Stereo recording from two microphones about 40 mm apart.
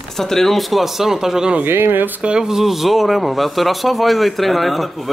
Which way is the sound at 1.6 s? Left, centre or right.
Right.